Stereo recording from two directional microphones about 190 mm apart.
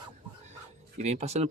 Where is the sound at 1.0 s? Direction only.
35° right (ahead or behind).